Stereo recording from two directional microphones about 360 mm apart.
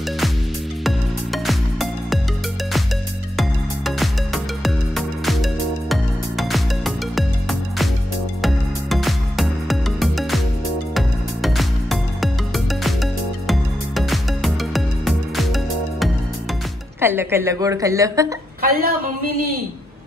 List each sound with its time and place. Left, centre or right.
0.8 s music: centre
3.3 s music: centre
17.0 s a woman's voice: centre
18.6 s a man's voice: right